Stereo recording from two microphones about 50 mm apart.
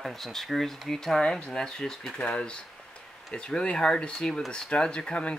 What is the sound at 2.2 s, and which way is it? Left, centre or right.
A man's voice, left.